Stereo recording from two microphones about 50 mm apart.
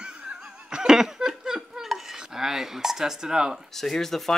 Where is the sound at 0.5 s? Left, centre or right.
Centre.